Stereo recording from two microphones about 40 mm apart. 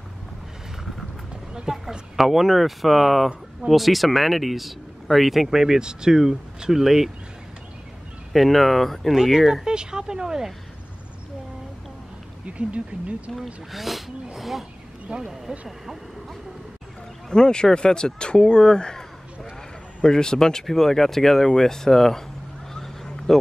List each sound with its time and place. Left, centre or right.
1.5 s a sound: right
1.9 s speech: centre
8.3 s speech: centre
9.1 s speech: centre
12.4 s speech: right
13.7 s speech: centre
15.1 s speech: right
17.3 s speech: centre
20.1 s speech: centre
22.8 s a sound: centre